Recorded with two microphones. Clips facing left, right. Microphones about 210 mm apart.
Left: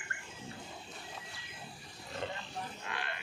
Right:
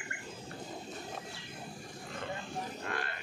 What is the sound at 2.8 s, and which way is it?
Grunt, 45° right (ahead or behind).